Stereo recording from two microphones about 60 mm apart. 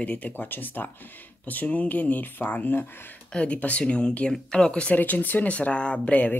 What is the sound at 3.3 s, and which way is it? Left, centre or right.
Speech, centre.